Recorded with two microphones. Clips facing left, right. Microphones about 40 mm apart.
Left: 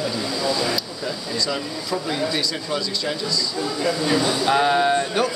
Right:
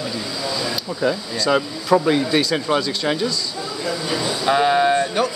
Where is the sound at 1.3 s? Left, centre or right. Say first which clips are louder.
Right 6 dB; right.